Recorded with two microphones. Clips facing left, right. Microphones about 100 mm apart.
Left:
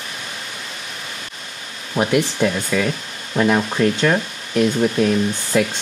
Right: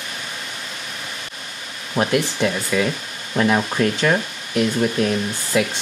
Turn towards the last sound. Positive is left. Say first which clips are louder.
# left 3 dB
turn(degrees=-5)  # may be behind; listen again after turning